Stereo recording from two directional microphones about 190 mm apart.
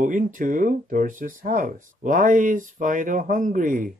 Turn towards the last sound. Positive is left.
turn(degrees=-45)  # may be behind; listen again after turning